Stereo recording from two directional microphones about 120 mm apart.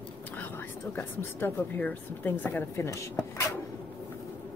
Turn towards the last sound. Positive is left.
turn(degrees=25)  # may be behind; listen again after turning